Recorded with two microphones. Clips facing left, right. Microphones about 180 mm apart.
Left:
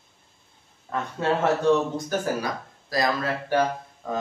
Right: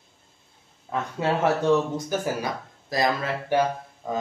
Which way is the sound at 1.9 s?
20° right (ahead or behind).